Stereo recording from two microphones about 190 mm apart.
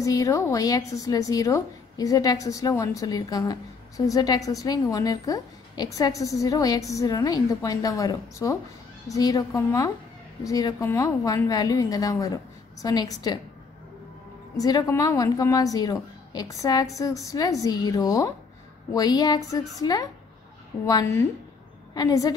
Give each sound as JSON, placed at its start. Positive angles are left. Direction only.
{"t": 0.0, "sound": "a woman's voice", "side_deg": 15}
{"t": 14.6, "sound": "a woman's voice", "side_deg": 20}